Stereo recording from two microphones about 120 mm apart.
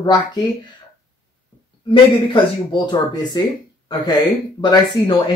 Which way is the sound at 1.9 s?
40° left (ahead or behind).